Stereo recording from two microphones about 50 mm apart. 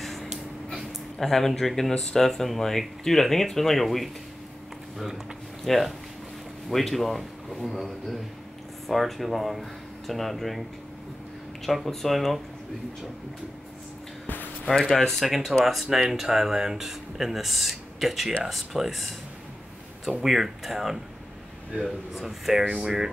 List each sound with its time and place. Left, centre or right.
0.0 s a sound: centre
1.1 s speech: centre
11.6 s speech: centre
14.2 s a sound: left
15.0 s speech: centre
20.1 s speech: centre